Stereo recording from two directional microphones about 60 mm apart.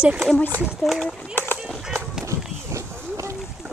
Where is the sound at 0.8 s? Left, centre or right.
Centre.